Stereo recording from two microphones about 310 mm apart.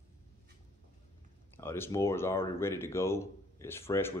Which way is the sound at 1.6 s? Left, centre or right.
Centre.